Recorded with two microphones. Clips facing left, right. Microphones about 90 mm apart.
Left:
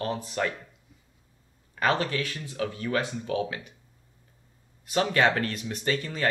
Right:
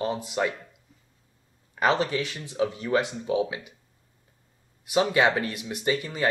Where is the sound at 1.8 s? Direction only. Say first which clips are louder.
Right 2 dB; 20° right (ahead or behind).